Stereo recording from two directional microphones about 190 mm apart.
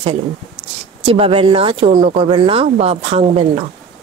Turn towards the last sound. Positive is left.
turn(degrees=-30)  # may be behind; listen again after turning